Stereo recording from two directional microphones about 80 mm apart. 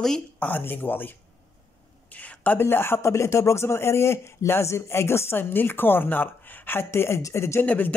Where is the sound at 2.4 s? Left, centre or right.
Left.